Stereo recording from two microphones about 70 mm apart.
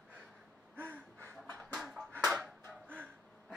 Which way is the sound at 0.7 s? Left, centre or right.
Right.